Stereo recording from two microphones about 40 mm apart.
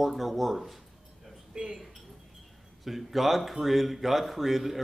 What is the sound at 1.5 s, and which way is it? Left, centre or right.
Speech, right.